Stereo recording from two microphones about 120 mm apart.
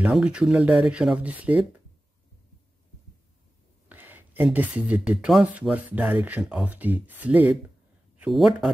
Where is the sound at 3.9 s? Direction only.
15° right (ahead or behind).